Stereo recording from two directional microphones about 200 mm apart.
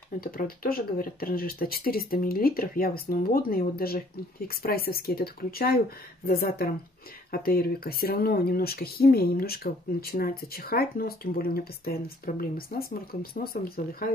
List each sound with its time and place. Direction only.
0.2 s speech: 45° left (ahead or behind)